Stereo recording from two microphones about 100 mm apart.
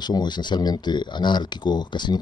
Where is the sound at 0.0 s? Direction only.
45° left (ahead or behind).